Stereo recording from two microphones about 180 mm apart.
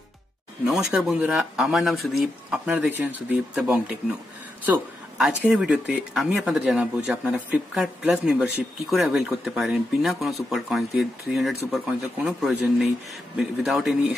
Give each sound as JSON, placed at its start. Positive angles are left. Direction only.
{"t": 0.7, "sound": "speech", "side_deg": 0}